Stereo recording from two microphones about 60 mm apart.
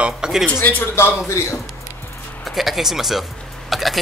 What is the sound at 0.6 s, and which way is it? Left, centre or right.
Speech, left.